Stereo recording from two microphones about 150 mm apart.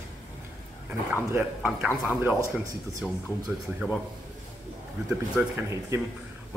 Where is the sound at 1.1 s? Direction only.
10° right (ahead or behind).